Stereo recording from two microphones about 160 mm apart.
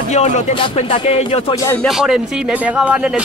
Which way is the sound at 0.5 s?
35° left (ahead or behind).